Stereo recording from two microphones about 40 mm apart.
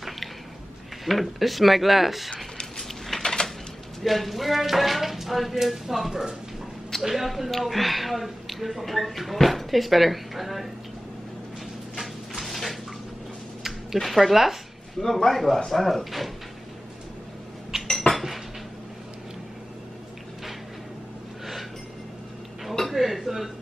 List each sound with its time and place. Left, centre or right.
1.0 s speech: centre
3.2 s a sound: centre
4.0 s speech: centre
12.4 s bathtub: centre
13.9 s speech: centre
15.0 s speech: centre
17.8 s cutlery: centre
22.7 s a sound: centre